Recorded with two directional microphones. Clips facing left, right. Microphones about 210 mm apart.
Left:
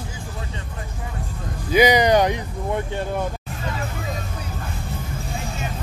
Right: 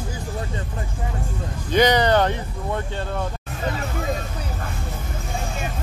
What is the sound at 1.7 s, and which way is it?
Speech, 10° left (ahead or behind).